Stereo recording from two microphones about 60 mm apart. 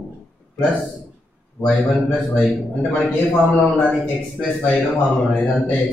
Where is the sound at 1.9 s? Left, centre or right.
Centre.